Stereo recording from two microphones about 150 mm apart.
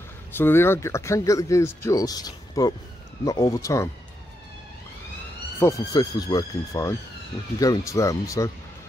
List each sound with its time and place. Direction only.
0.3 s speech: 15° left (ahead or behind)
5.6 s speech: 20° left (ahead or behind)